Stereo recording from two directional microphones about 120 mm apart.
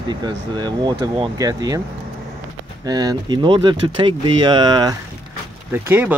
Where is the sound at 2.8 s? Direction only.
35° right (ahead or behind).